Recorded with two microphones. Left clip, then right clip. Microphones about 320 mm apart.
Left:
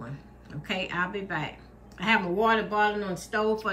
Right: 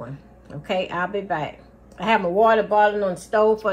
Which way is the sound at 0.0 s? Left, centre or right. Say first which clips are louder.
Right 6 dB; centre.